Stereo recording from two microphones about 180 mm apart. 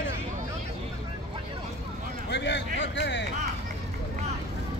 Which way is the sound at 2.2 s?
75° left (ahead or behind).